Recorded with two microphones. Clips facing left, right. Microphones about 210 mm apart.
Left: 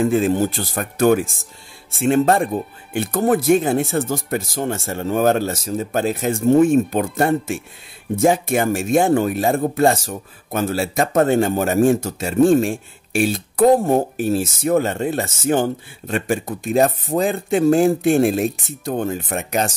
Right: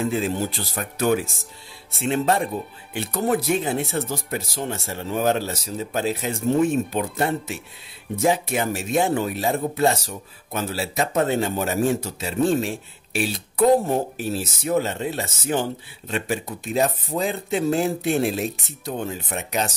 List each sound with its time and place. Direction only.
0.0 s speech: 50° left (ahead or behind)